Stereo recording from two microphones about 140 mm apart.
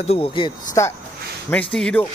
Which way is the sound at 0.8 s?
20° left (ahead or behind).